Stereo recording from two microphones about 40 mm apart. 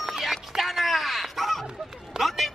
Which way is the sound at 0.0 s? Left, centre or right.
Centre.